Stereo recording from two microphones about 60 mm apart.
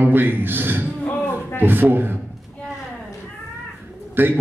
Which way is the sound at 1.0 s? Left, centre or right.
Left.